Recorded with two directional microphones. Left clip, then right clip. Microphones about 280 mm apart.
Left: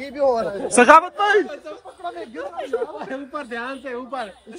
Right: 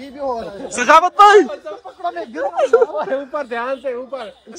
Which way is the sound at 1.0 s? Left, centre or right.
Centre.